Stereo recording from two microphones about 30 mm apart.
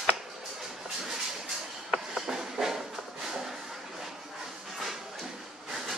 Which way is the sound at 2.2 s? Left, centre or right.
Centre.